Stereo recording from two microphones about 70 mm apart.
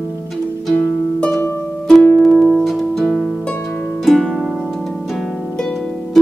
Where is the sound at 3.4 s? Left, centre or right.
Centre.